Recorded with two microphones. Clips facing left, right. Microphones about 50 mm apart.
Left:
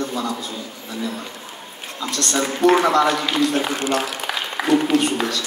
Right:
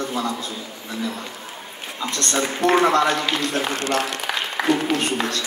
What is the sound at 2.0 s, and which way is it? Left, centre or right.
Speech, right.